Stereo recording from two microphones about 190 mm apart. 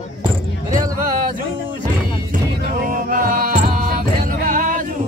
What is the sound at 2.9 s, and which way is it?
Music, 45° right (ahead or behind).